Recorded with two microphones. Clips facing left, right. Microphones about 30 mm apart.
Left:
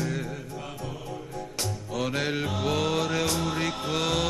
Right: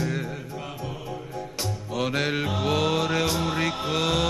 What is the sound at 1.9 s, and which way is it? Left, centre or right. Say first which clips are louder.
Mantra: right 3 dB; centre.